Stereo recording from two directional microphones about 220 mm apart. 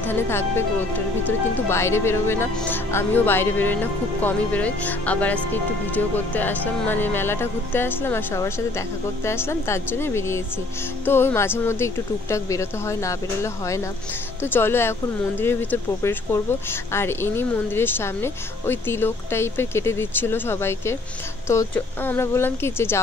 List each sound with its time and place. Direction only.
0.0 s speech: 10° left (ahead or behind)